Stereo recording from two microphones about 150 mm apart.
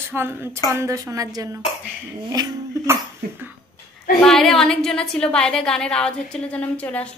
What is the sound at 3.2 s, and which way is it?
Cough, 90° right.